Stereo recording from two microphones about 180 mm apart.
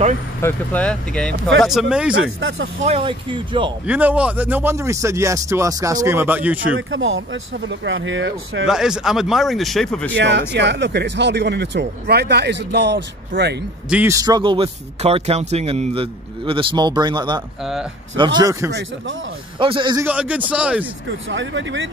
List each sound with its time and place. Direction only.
0.4 s speech: 10° left (ahead or behind); by 2.2 s 5° right (ahead or behind)
2.2 s speech: 90° right
2.8 s a man's voice: 30° right (ahead or behind)
3.8 s speech: 10° right (ahead or behind)
6.9 s speech: 90° right
8.6 s speech: 5° right (ahead or behind)
10.1 s speech: 75° right (ahead or behind)
13.8 s speech: 10° right (ahead or behind)
14.1 s a man's voice: 20° right (ahead or behind)
18.7 s speech: 75° right (ahead or behind)
19.6 s a man's voice: 25° right (ahead or behind)
20.1 s speech: 5° right (ahead or behind)
21.3 s speech: 90° right